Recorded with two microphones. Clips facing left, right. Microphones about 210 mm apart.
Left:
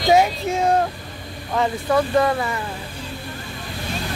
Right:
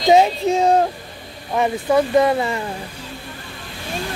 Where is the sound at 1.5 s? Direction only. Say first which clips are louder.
Right 2 dB; 15° right (ahead or behind).